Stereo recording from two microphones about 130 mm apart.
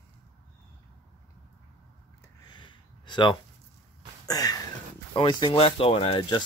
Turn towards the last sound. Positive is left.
turn(degrees=45)  # may be behind; listen again after turning